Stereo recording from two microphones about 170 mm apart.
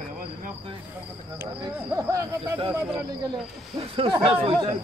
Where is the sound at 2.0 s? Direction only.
20° right (ahead or behind).